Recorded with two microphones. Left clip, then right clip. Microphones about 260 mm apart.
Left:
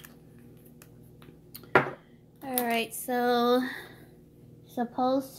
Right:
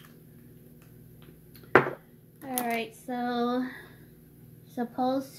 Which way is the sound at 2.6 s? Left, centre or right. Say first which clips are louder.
Left 2 dB; left.